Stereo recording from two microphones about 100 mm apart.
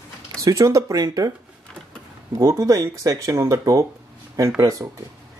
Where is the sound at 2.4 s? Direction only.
35° right (ahead or behind).